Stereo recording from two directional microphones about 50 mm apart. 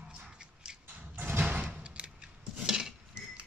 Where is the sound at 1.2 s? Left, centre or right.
Right.